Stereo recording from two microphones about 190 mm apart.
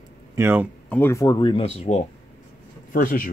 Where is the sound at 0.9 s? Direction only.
15° left (ahead or behind); by 2.0 s 35° left (ahead or behind).